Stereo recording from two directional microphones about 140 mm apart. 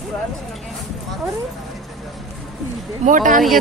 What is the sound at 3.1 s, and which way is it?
Speech, 70° right (ahead or behind).